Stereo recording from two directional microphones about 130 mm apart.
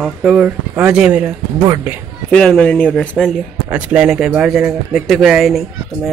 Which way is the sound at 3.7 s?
10° right (ahead or behind).